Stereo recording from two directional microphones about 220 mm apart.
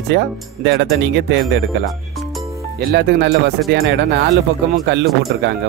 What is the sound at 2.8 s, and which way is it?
Music, 45° right (ahead or behind).